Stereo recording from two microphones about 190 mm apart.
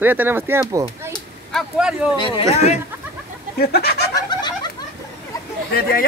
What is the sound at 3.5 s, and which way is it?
Speech, 55° left (ahead or behind).